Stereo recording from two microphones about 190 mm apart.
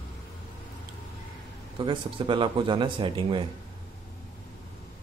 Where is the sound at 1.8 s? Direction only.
25° right (ahead or behind).